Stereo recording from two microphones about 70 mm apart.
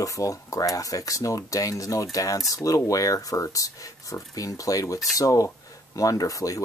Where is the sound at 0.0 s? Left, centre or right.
Left.